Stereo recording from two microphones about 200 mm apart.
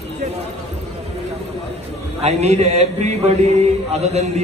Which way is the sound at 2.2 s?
35° right (ahead or behind).